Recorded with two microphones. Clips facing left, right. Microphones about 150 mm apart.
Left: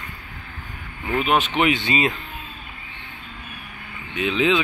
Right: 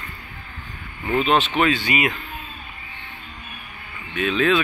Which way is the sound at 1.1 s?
10° left (ahead or behind).